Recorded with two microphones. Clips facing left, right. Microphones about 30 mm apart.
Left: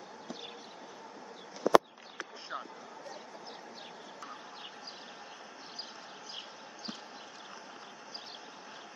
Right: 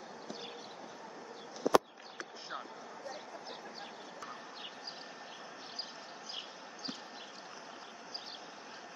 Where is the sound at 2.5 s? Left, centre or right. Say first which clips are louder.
Left 3 dB; right.